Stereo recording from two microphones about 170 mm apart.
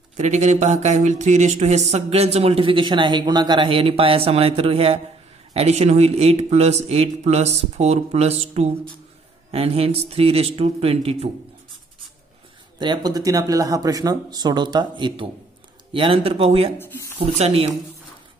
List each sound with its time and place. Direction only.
0.2 s speech: 45° right (ahead or behind)
12.7 s speech: 25° right (ahead or behind)
16.7 s speech: 15° left (ahead or behind)
17.2 s speech: 35° right (ahead or behind)